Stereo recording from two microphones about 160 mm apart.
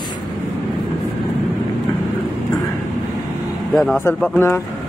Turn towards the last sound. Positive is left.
turn(degrees=15)  # may be behind; listen again after turning